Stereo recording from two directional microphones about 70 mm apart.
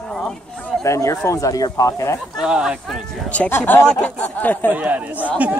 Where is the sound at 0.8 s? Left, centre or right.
Left.